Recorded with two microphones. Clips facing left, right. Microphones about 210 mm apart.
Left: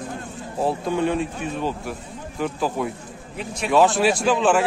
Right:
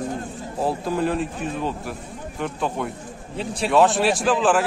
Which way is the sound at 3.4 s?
30° right (ahead or behind).